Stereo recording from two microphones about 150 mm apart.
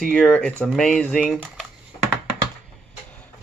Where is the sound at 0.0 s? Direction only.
5° left (ahead or behind).